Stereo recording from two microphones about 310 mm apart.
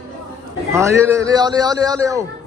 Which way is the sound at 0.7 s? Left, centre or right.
Centre.